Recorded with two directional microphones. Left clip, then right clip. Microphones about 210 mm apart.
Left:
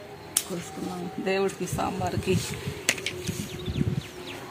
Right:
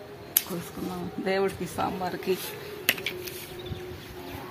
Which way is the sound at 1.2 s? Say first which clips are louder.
Even; 25° left (ahead or behind).